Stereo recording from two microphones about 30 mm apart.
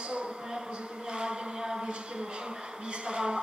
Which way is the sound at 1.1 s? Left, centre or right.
Right.